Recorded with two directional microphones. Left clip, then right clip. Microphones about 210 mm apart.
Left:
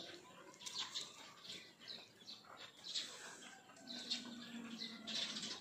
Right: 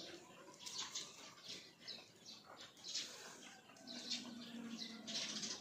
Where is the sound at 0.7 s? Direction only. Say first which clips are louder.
Left 2 dB; 5° right (ahead or behind).